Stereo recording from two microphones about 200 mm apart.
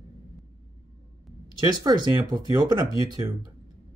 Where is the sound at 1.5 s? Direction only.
20° right (ahead or behind).